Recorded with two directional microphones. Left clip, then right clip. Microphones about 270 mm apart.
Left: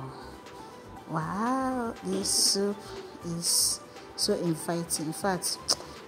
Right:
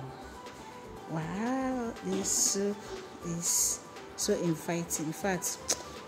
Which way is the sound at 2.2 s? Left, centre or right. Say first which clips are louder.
Left 5 dB; centre.